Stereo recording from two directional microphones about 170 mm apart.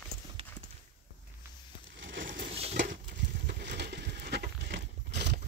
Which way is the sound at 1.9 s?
90° right.